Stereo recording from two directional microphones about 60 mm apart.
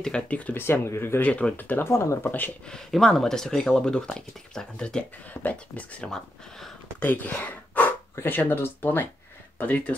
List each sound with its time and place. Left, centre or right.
0.3 s speech: left
0.6 s speech: left
1.2 s speech: left
1.9 s speech: left
2.2 s speech: left
2.6 s speech: centre
5.3 s speech: left
6.0 s speech: centre
7.0 s speech: left